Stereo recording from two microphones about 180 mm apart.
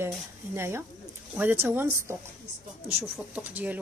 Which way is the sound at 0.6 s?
15° right (ahead or behind).